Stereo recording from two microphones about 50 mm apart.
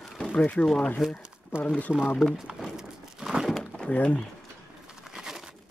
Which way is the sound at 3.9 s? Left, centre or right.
Left.